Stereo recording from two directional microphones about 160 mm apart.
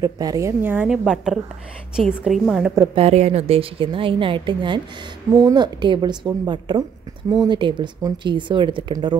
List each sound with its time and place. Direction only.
0.0 s a woman's voice: 25° right (ahead or behind)
0.8 s a woman's voice: centre (ahead or behind)
2.9 s a woman's voice: 40° right (ahead or behind)